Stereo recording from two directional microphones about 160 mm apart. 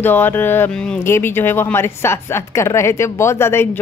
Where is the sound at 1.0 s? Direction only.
15° left (ahead or behind).